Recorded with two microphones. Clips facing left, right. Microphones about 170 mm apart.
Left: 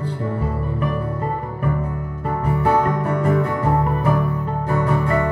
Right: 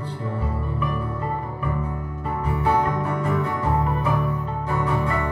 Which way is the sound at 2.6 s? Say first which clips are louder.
Left 3 dB; 50° left (ahead or behind).